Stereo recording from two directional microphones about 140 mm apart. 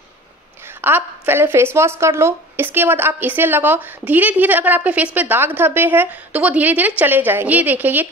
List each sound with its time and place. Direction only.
0.7 s a woman's voice: 15° right (ahead or behind)